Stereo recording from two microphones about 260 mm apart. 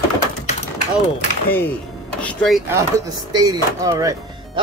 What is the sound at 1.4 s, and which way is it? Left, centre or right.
Speech, centre.